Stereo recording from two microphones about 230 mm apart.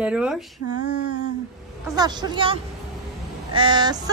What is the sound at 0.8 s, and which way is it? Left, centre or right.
Female singing, left.